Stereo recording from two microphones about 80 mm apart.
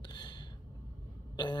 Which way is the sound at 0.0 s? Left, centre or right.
Left.